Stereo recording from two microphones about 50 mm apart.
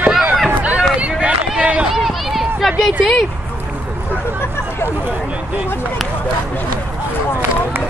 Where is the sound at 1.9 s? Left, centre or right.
Centre.